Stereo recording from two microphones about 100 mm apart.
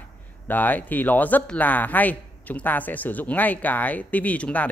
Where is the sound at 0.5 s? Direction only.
20° left (ahead or behind).